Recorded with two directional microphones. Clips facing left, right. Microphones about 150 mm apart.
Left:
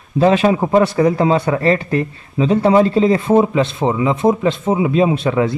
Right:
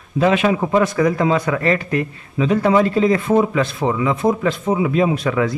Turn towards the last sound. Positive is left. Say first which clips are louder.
# left 3 dB
turn(degrees=25)  # may be behind; listen again after turning